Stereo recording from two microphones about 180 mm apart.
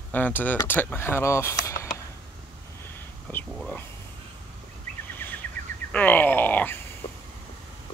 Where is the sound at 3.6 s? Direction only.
5° left (ahead or behind).